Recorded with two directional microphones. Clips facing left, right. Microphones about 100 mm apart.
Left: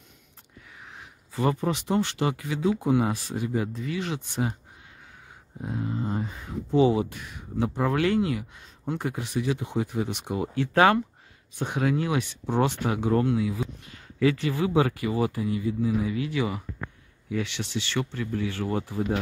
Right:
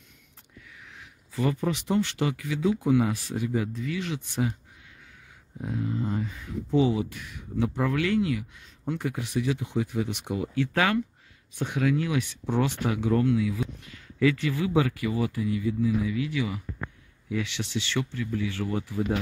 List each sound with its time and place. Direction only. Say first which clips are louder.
0.7 s speech: left 5 dB; 35° left (ahead or behind)
6.0 s speech: even; 35° left (ahead or behind)